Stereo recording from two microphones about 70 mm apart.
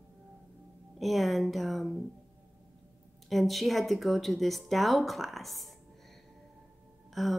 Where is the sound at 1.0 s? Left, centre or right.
Centre.